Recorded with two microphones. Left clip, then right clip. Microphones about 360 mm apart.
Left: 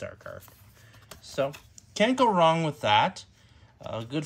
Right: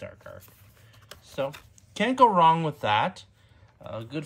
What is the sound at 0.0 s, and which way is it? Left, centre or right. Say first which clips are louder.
Speech: left 3 dB; centre.